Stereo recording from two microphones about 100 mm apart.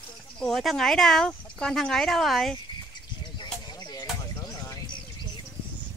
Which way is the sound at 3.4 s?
45° left (ahead or behind).